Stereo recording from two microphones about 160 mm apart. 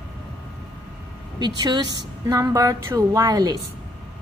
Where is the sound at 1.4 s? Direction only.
25° right (ahead or behind).